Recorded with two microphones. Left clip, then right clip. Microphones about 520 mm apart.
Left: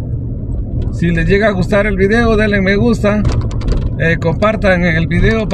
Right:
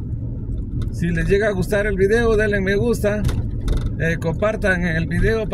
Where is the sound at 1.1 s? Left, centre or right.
Right.